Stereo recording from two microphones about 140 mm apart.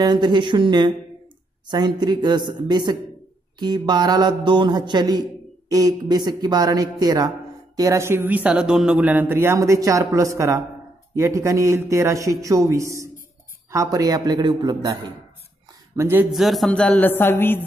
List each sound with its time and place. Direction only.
0.0 s a man's voice: 30° right (ahead or behind)
16.0 s speech: 15° right (ahead or behind)
16.3 s speech: centre (ahead or behind); by 17.6 s 15° left (ahead or behind)